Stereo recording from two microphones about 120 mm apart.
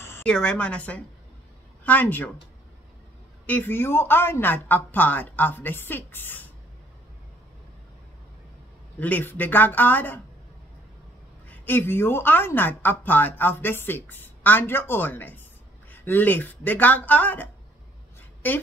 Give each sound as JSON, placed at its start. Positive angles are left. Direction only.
{"t": 0.2, "sound": "a woman's voice", "side_deg": 5}
{"t": 3.4, "sound": "a woman's voice", "side_deg": 15}
{"t": 9.0, "sound": "a woman's voice", "side_deg": 15}
{"t": 11.4, "sound": "a woman's voice", "side_deg": 15}